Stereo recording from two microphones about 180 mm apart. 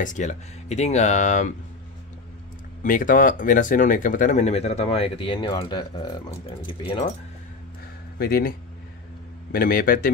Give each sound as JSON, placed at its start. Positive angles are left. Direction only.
{"t": 0.0, "sound": "speech", "side_deg": 45}
{"t": 2.8, "sound": "speech", "side_deg": 50}
{"t": 8.2, "sound": "a man's voice", "side_deg": 60}